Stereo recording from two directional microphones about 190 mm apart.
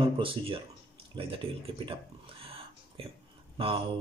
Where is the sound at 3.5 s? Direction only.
30° right (ahead or behind).